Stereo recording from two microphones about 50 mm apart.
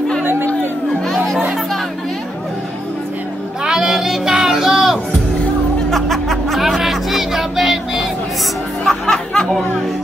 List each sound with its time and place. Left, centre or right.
0.2 s music: right
3.6 s a sound: centre
5.9 s music: centre
8.8 s music: centre